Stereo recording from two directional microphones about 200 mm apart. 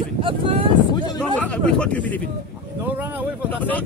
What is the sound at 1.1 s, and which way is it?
Speech, 5° left (ahead or behind).